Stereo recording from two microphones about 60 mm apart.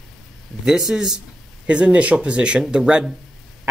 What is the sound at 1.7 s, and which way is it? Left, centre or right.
Speech, centre.